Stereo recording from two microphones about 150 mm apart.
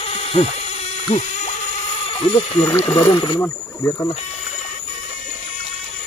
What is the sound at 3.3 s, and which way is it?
Speech, 20° left (ahead or behind).